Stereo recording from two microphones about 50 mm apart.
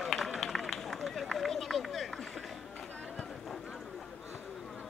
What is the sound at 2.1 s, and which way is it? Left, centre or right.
Music, centre.